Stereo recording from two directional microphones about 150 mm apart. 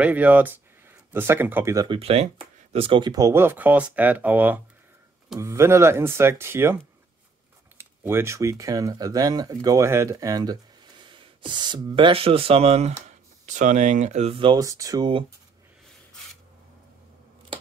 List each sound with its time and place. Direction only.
0.0 s speech: 10° right (ahead or behind)
1.9 s speech: 40° right (ahead or behind)
13.0 s speech: 55° right (ahead or behind); by 14.6 s 35° right (ahead or behind)
14.6 s speech: 20° right (ahead or behind)